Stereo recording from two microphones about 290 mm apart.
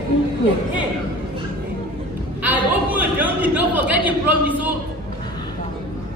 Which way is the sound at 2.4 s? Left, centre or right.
Centre.